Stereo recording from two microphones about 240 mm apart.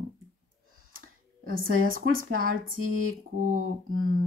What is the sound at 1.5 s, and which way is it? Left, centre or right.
Speech, right.